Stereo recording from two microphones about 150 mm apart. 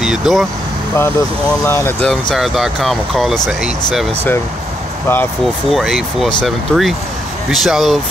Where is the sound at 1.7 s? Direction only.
15° left (ahead or behind).